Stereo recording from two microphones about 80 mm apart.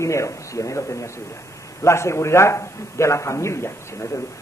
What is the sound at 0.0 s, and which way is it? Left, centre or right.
A man's voice, left.